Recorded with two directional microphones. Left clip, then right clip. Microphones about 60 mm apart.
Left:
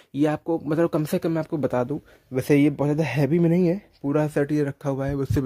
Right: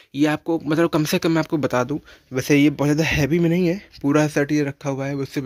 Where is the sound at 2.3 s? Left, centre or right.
Left.